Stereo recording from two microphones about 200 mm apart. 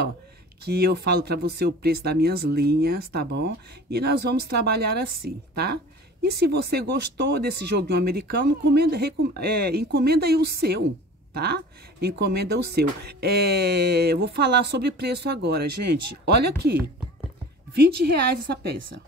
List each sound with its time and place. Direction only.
0.7 s speech: 50° right (ahead or behind)